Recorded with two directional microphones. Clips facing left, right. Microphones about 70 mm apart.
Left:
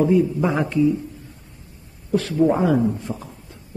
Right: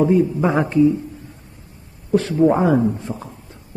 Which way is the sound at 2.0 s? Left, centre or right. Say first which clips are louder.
Right 3 dB; right.